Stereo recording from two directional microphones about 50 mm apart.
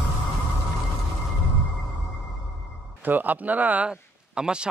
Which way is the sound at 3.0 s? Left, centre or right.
Right.